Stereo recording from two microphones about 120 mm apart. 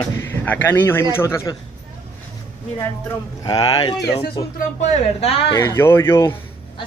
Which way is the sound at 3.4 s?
35° left (ahead or behind).